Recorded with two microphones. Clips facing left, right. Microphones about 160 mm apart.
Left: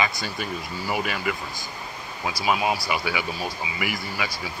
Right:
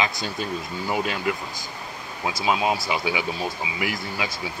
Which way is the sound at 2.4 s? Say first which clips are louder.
Right 1 dB; 20° right (ahead or behind).